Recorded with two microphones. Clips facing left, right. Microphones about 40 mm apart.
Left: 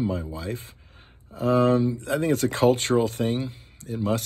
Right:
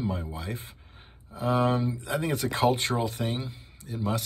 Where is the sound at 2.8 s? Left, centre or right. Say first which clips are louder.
Left 6 dB; left.